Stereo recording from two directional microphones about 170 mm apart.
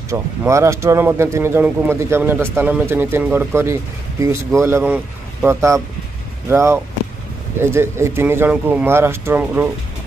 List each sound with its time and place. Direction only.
0.1 s speech: 15° right (ahead or behind)